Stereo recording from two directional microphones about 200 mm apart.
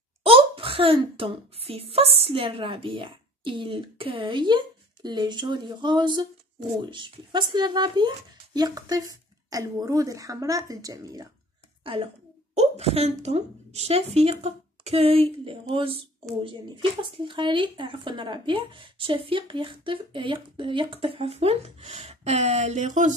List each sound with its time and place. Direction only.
0.2 s a woman's voice: 25° right (ahead or behind)